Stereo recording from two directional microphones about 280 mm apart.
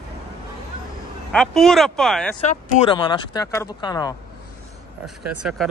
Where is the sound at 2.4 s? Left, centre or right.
Left.